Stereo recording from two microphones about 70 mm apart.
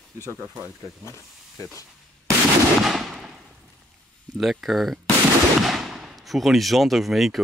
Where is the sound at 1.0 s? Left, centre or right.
Left.